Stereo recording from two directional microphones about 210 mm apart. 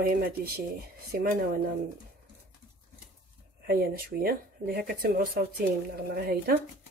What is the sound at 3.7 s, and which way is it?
Speech, 45° right (ahead or behind).